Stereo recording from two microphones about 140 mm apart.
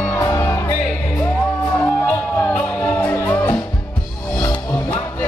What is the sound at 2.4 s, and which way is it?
Music, 10° left (ahead or behind).